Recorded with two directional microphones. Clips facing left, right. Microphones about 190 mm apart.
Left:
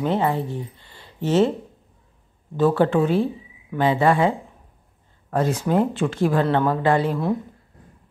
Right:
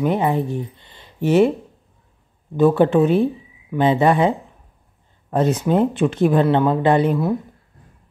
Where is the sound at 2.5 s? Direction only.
15° right (ahead or behind).